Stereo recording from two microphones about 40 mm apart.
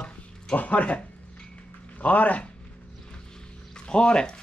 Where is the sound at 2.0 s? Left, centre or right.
Left.